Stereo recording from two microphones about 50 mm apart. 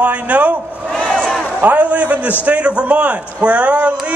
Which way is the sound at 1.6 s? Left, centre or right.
Right.